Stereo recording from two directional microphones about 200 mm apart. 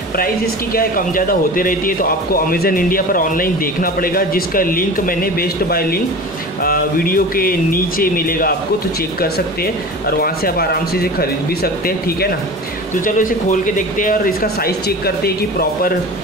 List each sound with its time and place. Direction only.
0.7 s speech: 45° left (ahead or behind)